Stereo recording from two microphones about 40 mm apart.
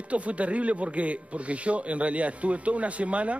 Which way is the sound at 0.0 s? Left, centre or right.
Right.